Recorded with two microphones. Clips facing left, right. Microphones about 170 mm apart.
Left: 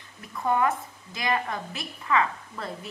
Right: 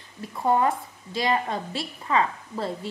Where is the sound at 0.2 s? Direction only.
30° right (ahead or behind).